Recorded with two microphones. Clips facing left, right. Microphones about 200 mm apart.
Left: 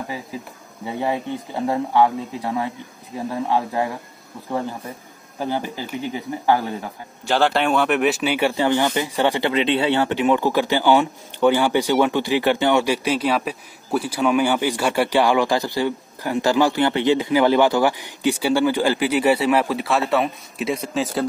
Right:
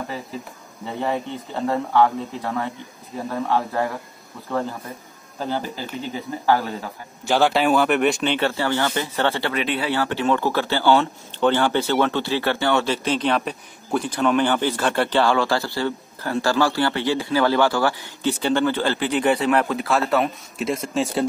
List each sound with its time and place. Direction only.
0.8 s speech: 15° left (ahead or behind)
7.2 s speech: 5° right (ahead or behind)